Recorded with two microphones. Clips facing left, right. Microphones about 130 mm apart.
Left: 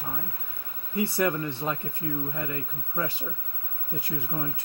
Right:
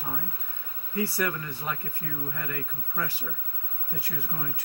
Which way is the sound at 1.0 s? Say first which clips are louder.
Left 3 dB; 25° left (ahead or behind).